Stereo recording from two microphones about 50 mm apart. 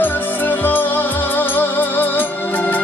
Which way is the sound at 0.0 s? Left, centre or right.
Left.